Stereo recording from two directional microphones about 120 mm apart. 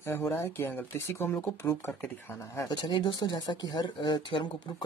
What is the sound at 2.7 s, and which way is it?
Speech, 40° left (ahead or behind).